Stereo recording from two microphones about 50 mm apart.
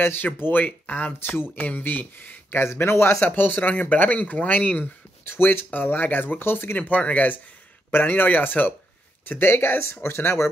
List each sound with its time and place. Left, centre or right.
0.0 s speech: left
1.6 s speech: left
3.2 s speech: left
5.3 s speech: left
6.8 s speech: left
9.3 s speech: left